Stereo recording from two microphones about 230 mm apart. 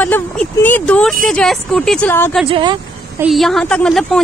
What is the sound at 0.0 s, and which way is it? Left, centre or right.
A woman's voice, centre.